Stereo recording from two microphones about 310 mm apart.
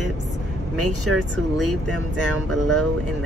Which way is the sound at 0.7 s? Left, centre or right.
Right.